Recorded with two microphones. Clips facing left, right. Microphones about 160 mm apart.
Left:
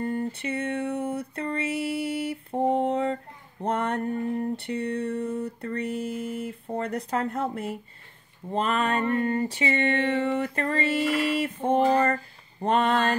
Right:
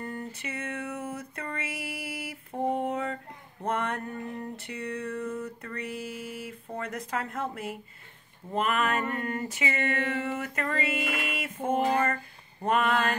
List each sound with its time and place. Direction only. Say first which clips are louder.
0.0 s music: left 8 dB; 30° left (ahead or behind)